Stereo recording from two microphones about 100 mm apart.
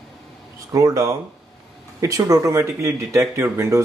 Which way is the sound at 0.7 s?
35° right (ahead or behind).